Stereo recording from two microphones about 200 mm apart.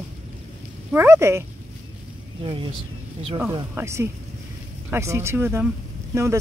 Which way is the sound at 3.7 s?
10° right (ahead or behind).